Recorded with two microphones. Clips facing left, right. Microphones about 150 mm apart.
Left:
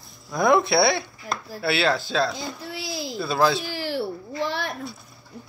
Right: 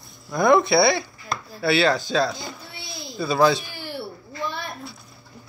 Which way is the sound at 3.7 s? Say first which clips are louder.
Left 6 dB; 90° left.